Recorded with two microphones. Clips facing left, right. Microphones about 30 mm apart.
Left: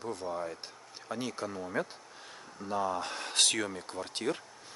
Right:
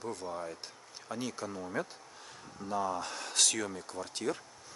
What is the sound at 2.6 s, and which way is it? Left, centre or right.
Speech, left.